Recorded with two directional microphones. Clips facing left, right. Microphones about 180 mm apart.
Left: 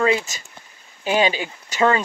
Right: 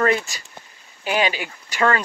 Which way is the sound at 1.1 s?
20° left (ahead or behind).